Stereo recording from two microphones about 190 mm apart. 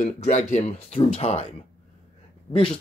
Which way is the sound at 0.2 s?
40° left (ahead or behind).